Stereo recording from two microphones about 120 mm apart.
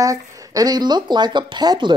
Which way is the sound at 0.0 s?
30° right (ahead or behind).